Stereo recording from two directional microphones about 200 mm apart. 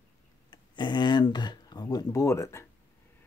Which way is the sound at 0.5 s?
20° left (ahead or behind).